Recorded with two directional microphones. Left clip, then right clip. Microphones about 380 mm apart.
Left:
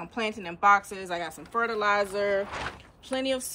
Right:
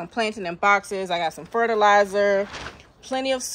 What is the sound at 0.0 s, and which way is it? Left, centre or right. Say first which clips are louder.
A woman's voice: right 6 dB; centre.